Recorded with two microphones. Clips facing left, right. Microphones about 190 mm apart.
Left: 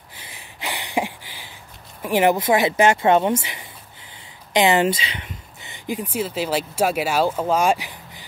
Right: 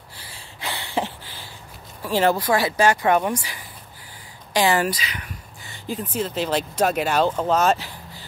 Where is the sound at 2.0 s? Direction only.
15° left (ahead or behind).